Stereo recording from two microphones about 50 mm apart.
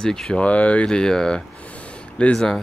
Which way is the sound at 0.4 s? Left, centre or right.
Left.